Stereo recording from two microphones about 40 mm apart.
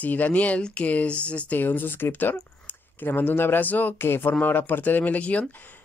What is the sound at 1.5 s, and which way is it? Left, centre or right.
Speech, left.